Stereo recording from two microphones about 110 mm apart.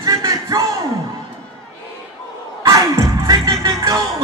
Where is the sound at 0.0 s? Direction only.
30° right (ahead or behind).